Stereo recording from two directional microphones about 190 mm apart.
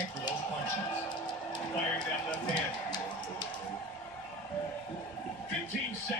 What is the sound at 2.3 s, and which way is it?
Speech, 20° left (ahead or behind).